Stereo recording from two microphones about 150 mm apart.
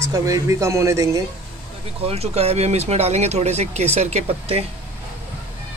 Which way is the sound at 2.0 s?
45° right (ahead or behind).